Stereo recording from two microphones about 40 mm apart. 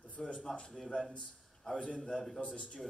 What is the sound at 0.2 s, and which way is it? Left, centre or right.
A man's voice, centre.